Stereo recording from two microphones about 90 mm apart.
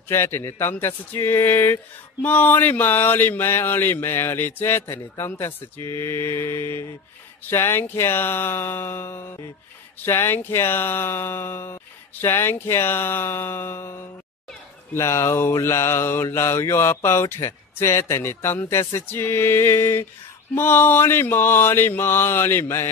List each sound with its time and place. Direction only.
0.1 s mantra: 30° left (ahead or behind)